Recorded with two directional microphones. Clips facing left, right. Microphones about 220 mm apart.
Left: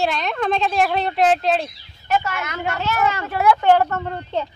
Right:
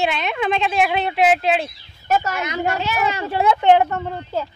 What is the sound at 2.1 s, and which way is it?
Speech, 45° right (ahead or behind).